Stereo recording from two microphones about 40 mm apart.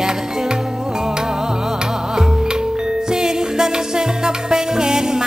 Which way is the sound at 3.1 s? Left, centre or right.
Centre.